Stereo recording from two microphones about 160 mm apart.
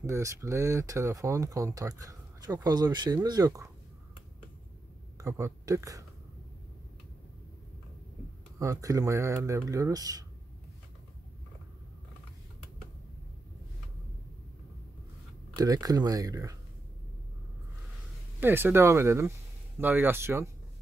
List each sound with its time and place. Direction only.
0.0 s speech: 20° right (ahead or behind)
5.1 s speech: 20° right (ahead or behind)
8.5 s speech: 20° right (ahead or behind)
15.5 s speech: 25° right (ahead or behind)
18.4 s speech: 15° right (ahead or behind)